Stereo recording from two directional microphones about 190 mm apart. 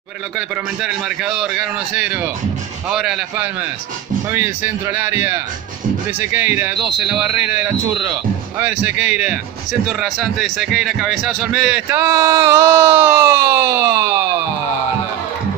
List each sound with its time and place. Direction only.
0.4 s a man's voice: 5° right (ahead or behind)